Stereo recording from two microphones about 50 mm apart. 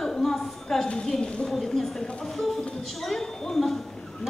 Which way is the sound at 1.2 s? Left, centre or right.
Centre.